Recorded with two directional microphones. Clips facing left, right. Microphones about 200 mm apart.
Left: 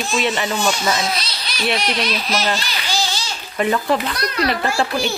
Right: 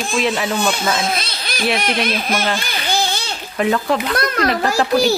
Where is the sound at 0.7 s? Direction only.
55° right (ahead or behind).